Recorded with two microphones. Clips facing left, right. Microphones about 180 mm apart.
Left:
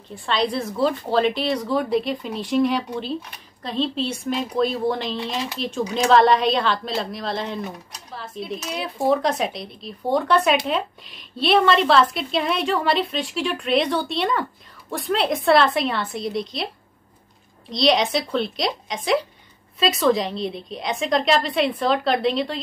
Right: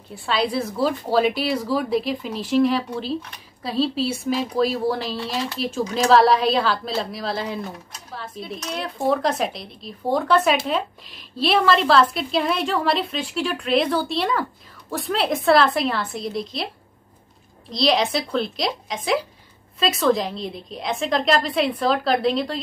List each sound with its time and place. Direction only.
0.1 s speech: 5° right (ahead or behind)
17.6 s speech: centre (ahead or behind)